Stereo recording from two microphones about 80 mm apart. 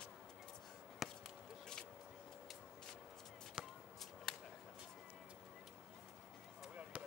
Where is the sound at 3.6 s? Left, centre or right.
Centre.